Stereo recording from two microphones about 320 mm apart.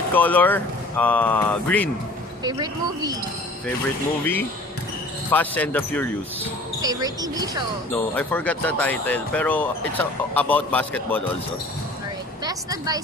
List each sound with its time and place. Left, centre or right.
0.1 s speech: centre
2.4 s speech: centre
4.2 s speech: centre
6.8 s speech: centre
7.9 s speech: centre
12.4 s speech: centre